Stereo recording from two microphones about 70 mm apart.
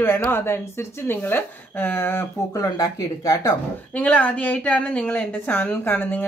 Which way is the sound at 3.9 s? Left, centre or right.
Left.